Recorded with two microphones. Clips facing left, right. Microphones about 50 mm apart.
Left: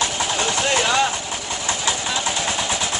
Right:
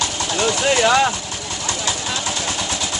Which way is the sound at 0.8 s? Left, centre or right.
Centre.